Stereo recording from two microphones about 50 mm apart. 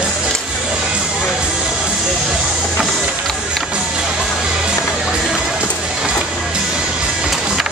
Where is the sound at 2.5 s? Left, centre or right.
Centre.